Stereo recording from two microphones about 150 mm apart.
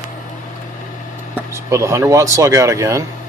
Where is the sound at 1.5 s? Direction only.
20° right (ahead or behind).